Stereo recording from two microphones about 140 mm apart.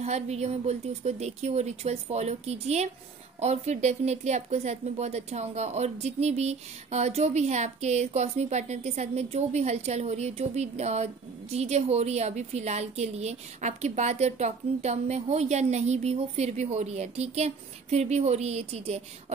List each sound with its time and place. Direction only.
0.0 s a woman's voice: 50° right (ahead or behind)